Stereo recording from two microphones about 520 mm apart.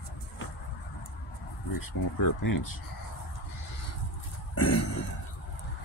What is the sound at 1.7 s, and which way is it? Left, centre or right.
Speech, left.